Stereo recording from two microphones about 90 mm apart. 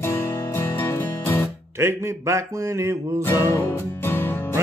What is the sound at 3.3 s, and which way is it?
Music, 30° left (ahead or behind).